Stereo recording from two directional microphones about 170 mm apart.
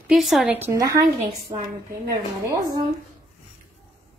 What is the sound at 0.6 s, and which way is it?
Speech, 15° right (ahead or behind).